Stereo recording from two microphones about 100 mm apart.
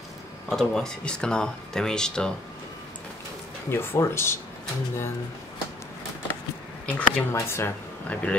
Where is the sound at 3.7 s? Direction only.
25° left (ahead or behind).